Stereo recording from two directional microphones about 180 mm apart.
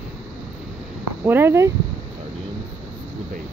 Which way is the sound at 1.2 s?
10° right (ahead or behind).